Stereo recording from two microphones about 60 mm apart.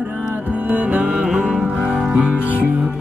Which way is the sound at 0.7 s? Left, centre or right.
Right.